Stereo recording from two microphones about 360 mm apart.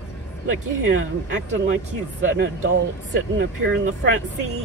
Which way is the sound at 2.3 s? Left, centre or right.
Right.